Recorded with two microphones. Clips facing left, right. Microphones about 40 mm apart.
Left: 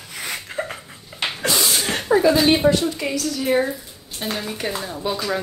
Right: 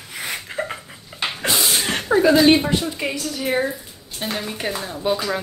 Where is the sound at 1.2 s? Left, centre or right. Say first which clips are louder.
Even; centre.